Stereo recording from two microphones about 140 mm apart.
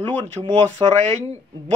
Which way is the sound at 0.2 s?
50° right (ahead or behind).